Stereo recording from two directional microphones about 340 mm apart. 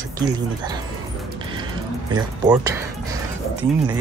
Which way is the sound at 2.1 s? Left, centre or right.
Centre.